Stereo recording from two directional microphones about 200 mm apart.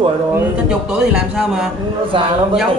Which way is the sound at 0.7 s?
5° right (ahead or behind).